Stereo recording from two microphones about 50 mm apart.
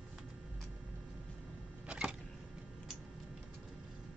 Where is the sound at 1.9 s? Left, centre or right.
Centre.